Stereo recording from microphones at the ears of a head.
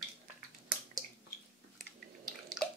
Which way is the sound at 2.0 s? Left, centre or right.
Right.